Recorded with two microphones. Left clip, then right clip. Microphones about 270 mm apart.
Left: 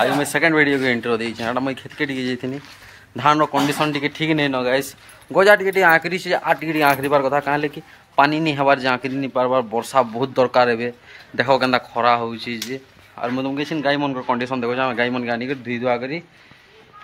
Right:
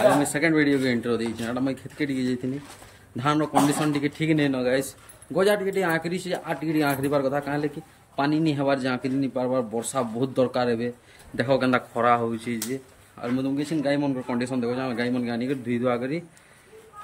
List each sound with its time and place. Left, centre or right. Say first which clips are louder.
0.4 s speech: left 5 dB; centre
9.3 s speech: left 10 dB; left
9.9 s speech: left 7 dB; centre